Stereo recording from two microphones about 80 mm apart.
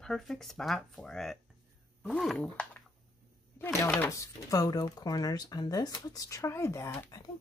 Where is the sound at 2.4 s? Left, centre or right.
Centre.